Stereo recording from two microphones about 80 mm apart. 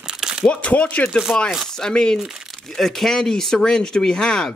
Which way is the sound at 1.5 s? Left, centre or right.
Centre.